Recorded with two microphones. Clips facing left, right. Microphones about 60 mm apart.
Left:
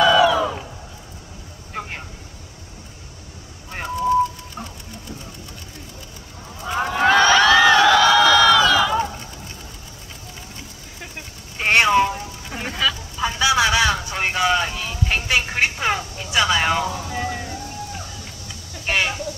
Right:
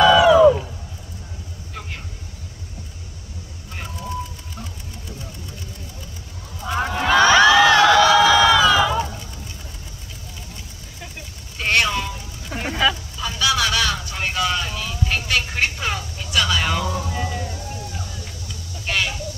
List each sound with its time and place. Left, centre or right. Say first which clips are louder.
0.2 s crowd: right 6 dB; centre
1.7 s vehicle: left 5 dB; left
6.6 s honk: even; centre
7.2 s a sound: right 3 dB; centre
11.5 s vehicle: left 4 dB; left
12.5 s vehicle: right 3 dB; centre
13.2 s vehicle: left 3 dB; left
17.1 s music: left 1 dB; left
18.9 s a sound: left 2 dB; left